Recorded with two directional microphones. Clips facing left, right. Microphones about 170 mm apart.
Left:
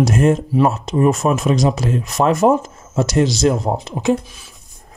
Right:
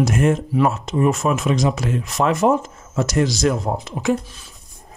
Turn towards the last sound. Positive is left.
turn(degrees=25)  # may be behind; listen again after turning